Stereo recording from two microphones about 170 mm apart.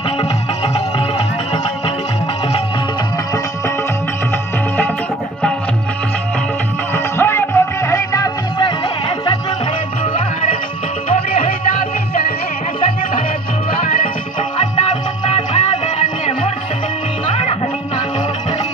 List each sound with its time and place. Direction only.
7.2 s music: 15° left (ahead or behind)
11.1 s music: 35° left (ahead or behind)
14.8 s music: 40° left (ahead or behind)